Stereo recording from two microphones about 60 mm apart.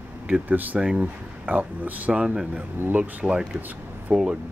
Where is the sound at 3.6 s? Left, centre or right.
Right.